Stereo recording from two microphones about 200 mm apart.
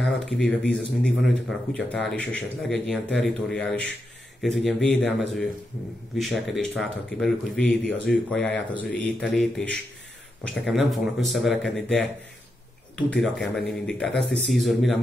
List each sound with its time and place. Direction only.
0.0 s speech: centre (ahead or behind)
13.2 s speech: centre (ahead or behind)
14.1 s speech: 65° left (ahead or behind)
14.5 s speech: centre (ahead or behind)